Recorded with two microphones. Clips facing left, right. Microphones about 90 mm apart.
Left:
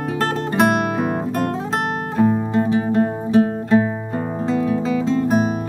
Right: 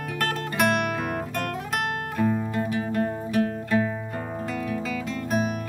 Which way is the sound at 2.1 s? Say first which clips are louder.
Left 8 dB; 30° left (ahead or behind).